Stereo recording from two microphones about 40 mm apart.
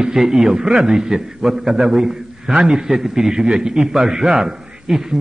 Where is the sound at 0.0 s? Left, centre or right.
Centre.